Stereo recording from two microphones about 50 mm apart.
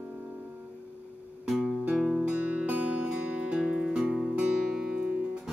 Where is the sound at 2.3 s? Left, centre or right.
Right.